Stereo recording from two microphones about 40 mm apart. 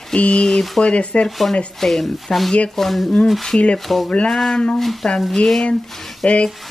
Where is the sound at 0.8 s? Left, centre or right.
Left.